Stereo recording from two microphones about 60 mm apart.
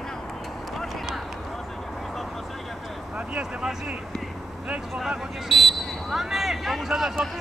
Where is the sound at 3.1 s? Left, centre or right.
Centre.